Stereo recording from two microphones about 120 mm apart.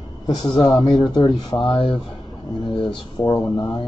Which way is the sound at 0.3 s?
35° left (ahead or behind).